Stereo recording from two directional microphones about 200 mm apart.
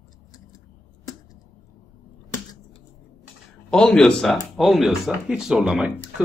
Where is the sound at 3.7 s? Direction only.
5° left (ahead or behind).